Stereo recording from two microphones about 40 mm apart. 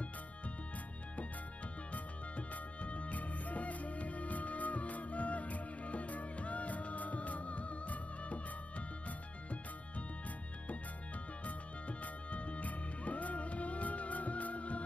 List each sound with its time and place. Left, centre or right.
1.9 s music: left
11.4 s music: left